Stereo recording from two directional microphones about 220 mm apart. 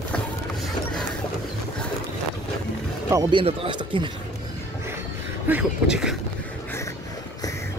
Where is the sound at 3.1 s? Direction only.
25° right (ahead or behind).